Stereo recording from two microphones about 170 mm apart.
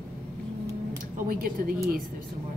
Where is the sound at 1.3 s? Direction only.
55° right (ahead or behind).